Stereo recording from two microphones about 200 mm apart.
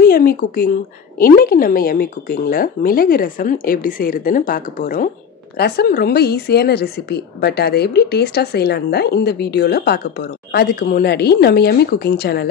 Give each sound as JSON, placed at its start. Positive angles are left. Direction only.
{"t": 0.0, "sound": "a woman's voice", "side_deg": 45}